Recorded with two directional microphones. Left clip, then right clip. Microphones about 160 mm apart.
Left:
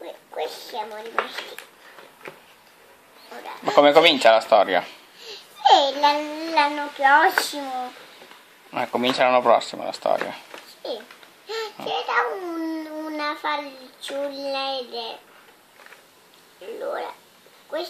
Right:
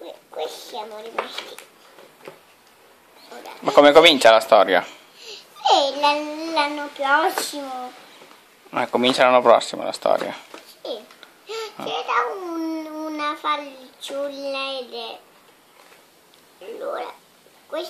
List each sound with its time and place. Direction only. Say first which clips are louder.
0.0 s a sound: even; 5° right (ahead or behind)
3.6 s speech: right 3 dB; 40° right (ahead or behind)
5.2 s a child's voice: left 3 dB; 5° right (ahead or behind)
8.7 s speech: right 3 dB; 35° right (ahead or behind)
10.5 s a sound: even; 5° right (ahead or behind)
11.9 s a child's voice: right 1 dB; 5° right (ahead or behind)
14.0 s child singing: right 1 dB; 5° right (ahead or behind)